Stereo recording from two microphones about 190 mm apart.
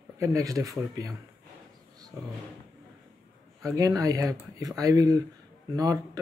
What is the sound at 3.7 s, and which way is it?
Speech, 20° right (ahead or behind).